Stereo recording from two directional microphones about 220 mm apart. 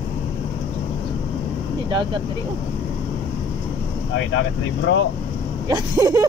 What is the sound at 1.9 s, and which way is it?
Speech, 20° right (ahead or behind).